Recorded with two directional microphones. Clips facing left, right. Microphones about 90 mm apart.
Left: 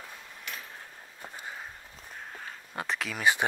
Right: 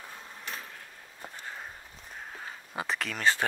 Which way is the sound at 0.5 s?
35° right (ahead or behind).